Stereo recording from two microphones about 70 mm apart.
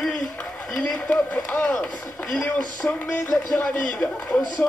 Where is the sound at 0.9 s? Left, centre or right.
Centre.